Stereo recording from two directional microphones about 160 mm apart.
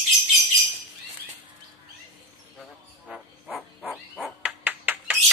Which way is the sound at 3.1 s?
Centre (ahead or behind).